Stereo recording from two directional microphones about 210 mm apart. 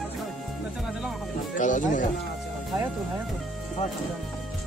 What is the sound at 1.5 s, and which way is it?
Speech, 35° left (ahead or behind).